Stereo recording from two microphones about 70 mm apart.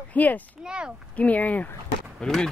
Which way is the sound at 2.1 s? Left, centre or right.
Centre.